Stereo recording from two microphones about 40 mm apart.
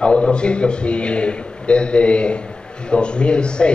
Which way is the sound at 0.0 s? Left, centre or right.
Left.